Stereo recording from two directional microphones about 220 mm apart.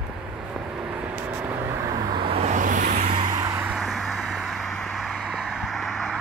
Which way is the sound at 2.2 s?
30° right (ahead or behind).